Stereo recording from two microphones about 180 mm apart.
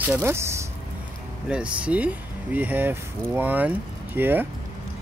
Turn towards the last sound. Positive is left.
turn(degrees=-10)  # may be behind; listen again after turning